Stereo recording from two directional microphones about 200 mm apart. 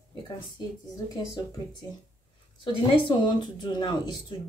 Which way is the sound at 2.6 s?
25° left (ahead or behind).